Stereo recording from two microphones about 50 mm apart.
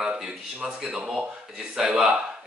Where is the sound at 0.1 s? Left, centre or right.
Centre.